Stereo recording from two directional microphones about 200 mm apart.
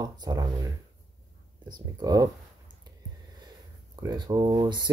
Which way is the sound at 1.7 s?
20° right (ahead or behind).